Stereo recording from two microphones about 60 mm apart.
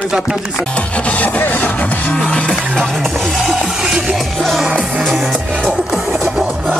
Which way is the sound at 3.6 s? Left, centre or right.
Centre.